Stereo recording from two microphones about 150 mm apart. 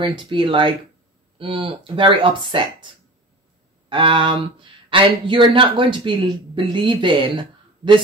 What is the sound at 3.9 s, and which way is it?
Speech, 35° right (ahead or behind).